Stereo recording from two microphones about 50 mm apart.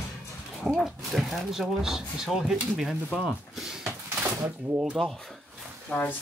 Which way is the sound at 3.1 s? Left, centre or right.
Centre.